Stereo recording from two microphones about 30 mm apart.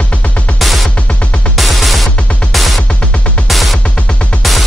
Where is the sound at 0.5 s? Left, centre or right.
Centre.